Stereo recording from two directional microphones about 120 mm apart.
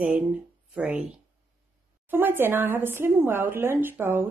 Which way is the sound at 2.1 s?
15° right (ahead or behind).